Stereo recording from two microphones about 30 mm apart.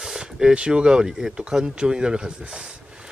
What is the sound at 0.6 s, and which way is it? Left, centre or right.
Speech, right.